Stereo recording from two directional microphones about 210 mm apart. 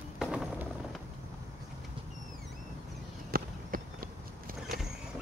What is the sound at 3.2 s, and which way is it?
Run, 45° right (ahead or behind).